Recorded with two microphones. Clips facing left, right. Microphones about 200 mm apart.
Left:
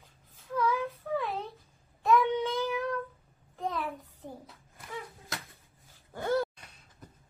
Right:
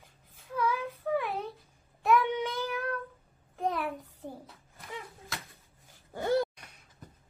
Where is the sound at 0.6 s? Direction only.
15° right (ahead or behind).